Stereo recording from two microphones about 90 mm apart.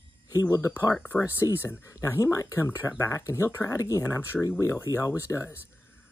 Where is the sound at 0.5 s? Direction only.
35° left (ahead or behind).